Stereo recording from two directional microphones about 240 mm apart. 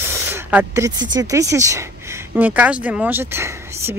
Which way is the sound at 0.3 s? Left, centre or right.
Centre.